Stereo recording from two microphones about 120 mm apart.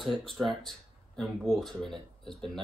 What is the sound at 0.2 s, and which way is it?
Speech, 45° right (ahead or behind).